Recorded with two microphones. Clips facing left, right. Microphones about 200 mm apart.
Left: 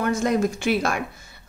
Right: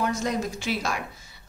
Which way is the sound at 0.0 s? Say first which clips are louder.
Left 5 dB; 55° left (ahead or behind).